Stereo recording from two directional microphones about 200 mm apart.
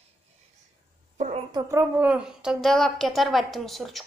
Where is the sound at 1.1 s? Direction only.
35° right (ahead or behind).